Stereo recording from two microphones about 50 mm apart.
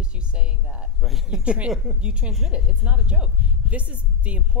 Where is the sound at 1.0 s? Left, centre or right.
Centre.